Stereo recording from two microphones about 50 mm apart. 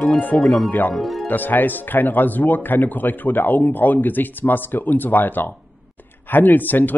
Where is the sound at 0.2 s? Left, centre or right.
Left.